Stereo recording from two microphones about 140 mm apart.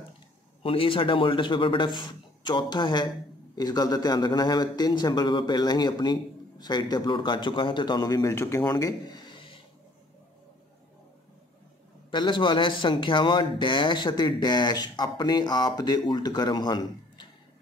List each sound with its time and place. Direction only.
0.6 s a man's voice: 40° left (ahead or behind)
12.1 s a man's voice: 35° left (ahead or behind)